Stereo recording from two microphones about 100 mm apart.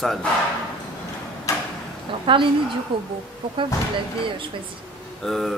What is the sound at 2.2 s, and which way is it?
Speech, 55° right (ahead or behind).